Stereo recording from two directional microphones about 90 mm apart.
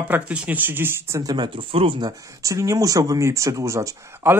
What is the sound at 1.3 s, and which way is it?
Speech, 70° right (ahead or behind).